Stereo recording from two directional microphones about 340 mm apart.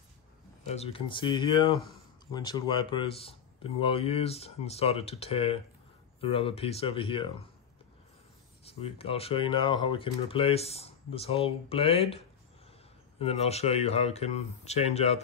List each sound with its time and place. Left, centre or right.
0.7 s speech: centre
8.6 s speech: centre
13.2 s speech: centre